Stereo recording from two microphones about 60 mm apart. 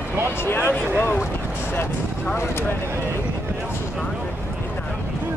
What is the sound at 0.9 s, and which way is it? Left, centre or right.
Speech, left.